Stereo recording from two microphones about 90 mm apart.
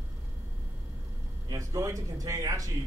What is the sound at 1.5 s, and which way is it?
A man's voice, 35° right (ahead or behind).